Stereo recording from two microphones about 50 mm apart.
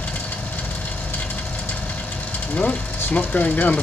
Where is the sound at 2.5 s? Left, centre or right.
Left.